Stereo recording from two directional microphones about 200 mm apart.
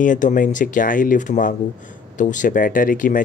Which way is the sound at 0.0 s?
40° left (ahead or behind).